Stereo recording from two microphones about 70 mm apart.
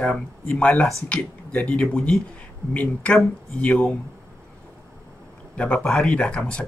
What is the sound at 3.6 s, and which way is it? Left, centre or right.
Speech, centre.